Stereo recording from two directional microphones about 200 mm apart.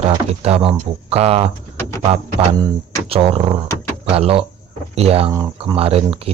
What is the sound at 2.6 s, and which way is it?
Speech, 30° right (ahead or behind).